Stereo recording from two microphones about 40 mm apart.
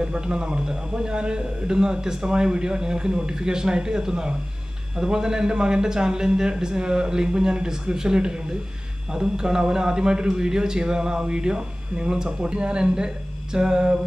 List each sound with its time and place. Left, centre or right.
0.0 s a man's voice: right